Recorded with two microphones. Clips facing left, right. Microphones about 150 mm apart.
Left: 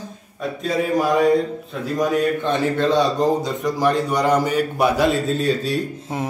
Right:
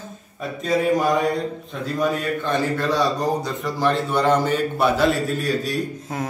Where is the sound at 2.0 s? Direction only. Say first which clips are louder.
Left 4 dB; 20° left (ahead or behind).